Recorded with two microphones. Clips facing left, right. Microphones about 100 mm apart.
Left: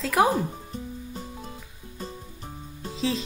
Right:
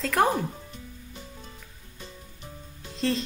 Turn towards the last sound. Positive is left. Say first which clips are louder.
# even
turn(degrees=0)  # may be behind; listen again after turning